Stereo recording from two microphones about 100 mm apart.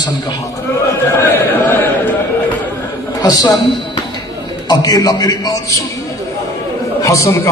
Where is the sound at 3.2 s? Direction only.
40° left (ahead or behind).